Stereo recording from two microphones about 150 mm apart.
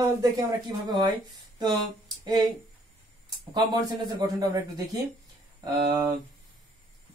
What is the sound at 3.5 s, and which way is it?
Speech, 30° right (ahead or behind).